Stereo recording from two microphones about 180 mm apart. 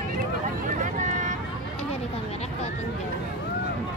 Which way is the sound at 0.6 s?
45° right (ahead or behind).